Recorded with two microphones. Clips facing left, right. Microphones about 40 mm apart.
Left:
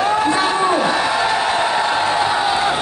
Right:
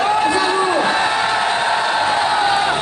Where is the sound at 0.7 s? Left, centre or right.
Right.